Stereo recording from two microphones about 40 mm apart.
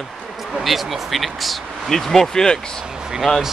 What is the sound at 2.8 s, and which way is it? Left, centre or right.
Vehicle, centre.